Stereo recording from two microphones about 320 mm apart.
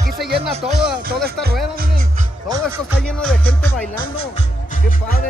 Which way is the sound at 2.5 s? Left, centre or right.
Centre.